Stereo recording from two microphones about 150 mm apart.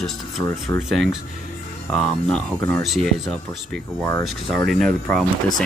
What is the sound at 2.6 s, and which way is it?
Speech, 20° left (ahead or behind).